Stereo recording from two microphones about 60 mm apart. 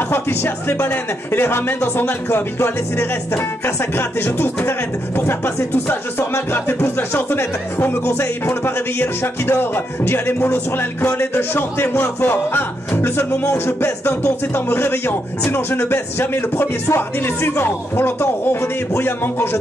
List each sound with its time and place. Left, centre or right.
0.1 s speech: left